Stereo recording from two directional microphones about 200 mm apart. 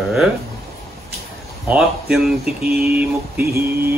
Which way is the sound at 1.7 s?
5° right (ahead or behind).